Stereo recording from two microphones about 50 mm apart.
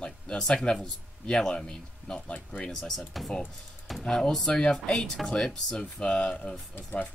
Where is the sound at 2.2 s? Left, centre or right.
Left.